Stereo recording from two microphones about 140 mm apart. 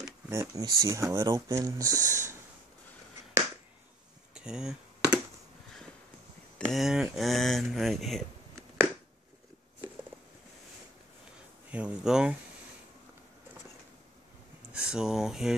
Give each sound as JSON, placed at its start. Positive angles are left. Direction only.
{"t": 0.3, "sound": "speech", "side_deg": -20}
{"t": 4.3, "sound": "a sound", "side_deg": -5}
{"t": 6.7, "sound": "speech", "side_deg": 0}
{"t": 11.7, "sound": "speech", "side_deg": -5}
{"t": 14.7, "sound": "speech", "side_deg": -5}